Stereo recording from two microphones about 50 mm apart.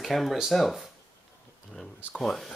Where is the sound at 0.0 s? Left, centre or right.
Centre.